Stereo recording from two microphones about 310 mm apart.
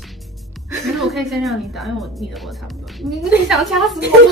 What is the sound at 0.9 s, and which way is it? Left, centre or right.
A woman's voice, centre.